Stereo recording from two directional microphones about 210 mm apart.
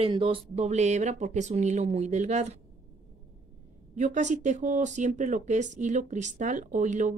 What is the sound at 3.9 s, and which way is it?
Speech, 35° right (ahead or behind).